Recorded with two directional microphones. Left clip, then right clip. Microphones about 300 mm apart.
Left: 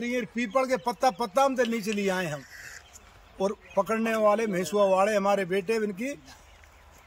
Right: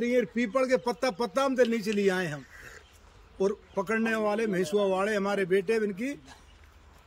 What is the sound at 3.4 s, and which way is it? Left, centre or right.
A man's voice, centre.